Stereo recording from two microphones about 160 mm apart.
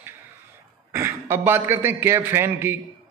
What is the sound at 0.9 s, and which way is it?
A man's voice, 15° right (ahead or behind).